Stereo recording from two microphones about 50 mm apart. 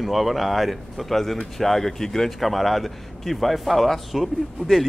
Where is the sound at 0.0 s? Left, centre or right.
Centre.